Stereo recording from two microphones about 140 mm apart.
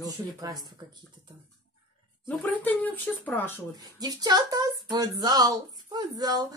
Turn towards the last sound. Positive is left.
turn(degrees=-30)  # may be behind; listen again after turning